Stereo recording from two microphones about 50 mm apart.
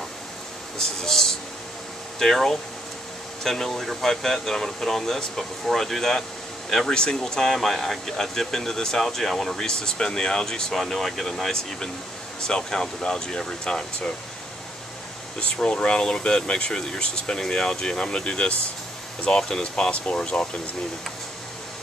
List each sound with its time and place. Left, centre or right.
0.7 s speech: centre
6.9 s speech: centre
15.3 s speech: centre
19.7 s speech: left